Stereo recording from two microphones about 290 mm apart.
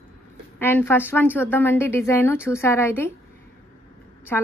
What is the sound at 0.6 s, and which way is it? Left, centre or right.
A woman's voice, centre.